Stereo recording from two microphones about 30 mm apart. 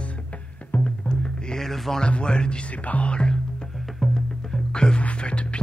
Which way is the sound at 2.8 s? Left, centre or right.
Left.